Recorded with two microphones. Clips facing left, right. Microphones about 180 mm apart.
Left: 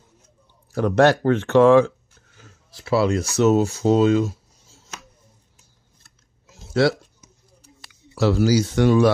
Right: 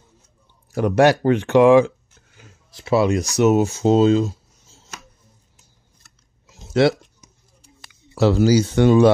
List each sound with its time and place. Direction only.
0.7 s speech: 15° right (ahead or behind)
6.6 s a sound: 20° right (ahead or behind)
7.9 s speech: 25° right (ahead or behind)